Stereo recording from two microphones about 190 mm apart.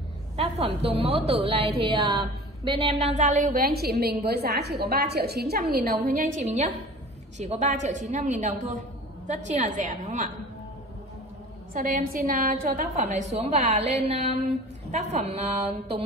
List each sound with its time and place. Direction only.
0.4 s a woman's voice: 30° right (ahead or behind)
11.7 s a woman's voice: 50° right (ahead or behind); by 16.0 s 30° right (ahead or behind)